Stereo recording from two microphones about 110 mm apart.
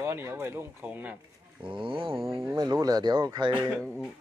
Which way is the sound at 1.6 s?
50° right (ahead or behind).